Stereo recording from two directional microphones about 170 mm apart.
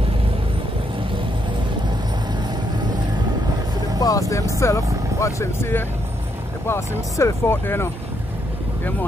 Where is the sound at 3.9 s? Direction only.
20° left (ahead or behind).